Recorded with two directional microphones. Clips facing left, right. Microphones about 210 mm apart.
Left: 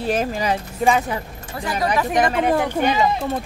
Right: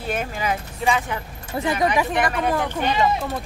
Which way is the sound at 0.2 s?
35° left (ahead or behind).